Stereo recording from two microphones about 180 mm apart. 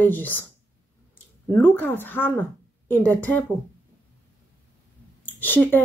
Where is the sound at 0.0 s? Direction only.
10° left (ahead or behind).